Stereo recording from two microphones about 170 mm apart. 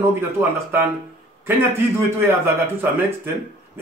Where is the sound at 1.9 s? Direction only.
15° right (ahead or behind).